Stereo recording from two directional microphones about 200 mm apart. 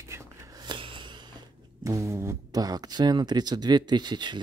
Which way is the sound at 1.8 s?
15° right (ahead or behind).